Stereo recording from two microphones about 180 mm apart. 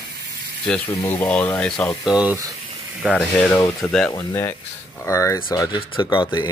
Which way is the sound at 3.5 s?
20° left (ahead or behind).